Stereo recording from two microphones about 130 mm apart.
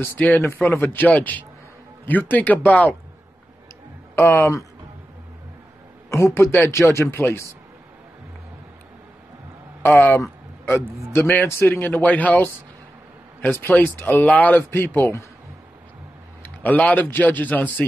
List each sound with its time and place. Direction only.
0.0 s a man's voice: 10° left (ahead or behind)
4.1 s a man's voice: 15° left (ahead or behind)
6.0 s a man's voice: 20° left (ahead or behind)
9.8 s a man's voice: 15° left (ahead or behind)
16.4 s a man's voice: 10° left (ahead or behind)